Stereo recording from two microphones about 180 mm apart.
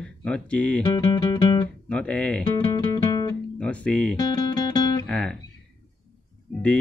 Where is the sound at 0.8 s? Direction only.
25° left (ahead or behind).